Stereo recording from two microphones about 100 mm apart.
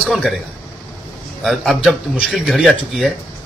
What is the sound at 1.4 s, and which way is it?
A man's voice, centre (ahead or behind).